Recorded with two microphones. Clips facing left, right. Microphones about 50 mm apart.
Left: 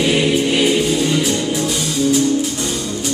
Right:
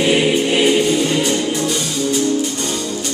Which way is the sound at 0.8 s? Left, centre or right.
Centre.